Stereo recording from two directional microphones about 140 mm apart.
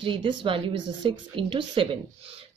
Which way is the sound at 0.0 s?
35° right (ahead or behind).